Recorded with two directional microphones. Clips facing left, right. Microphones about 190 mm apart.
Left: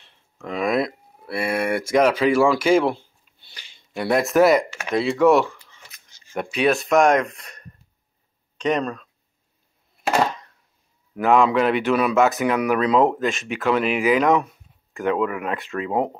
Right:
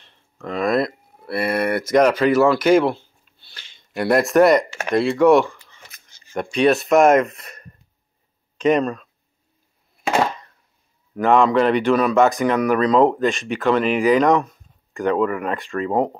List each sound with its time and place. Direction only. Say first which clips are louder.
0.0 s a sound: right 3 dB; 5° left (ahead or behind)
1.4 s speech: right 2 dB; 5° left (ahead or behind)
3.3 s a sound: right 1 dB; 15° left (ahead or behind)
3.9 s speech: right 3 dB; centre (ahead or behind)
5.8 s camera: right 2 dB; 50° right (ahead or behind)
6.3 s speech: right 3 dB; 5° left (ahead or behind)
11.1 s speech: right 2 dB; 5° left (ahead or behind)